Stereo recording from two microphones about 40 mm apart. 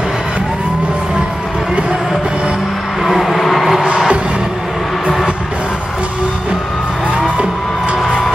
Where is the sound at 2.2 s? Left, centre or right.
Right.